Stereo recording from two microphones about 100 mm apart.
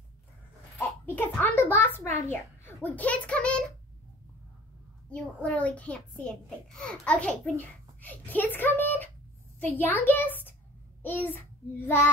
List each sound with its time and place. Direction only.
1.0 s a child's voice: 20° left (ahead or behind)
5.1 s a child's voice: 15° left (ahead or behind)